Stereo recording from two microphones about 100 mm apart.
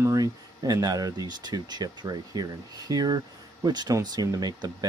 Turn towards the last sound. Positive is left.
turn(degrees=-40)  # may be behind; listen again after turning